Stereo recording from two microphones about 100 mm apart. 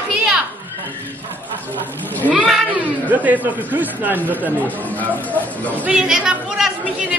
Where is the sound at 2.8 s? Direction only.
15° right (ahead or behind).